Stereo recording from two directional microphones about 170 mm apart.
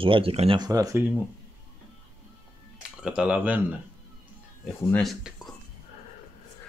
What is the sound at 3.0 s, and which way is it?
Speech, 5° right (ahead or behind).